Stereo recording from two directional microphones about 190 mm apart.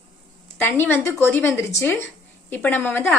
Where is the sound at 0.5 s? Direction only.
10° left (ahead or behind).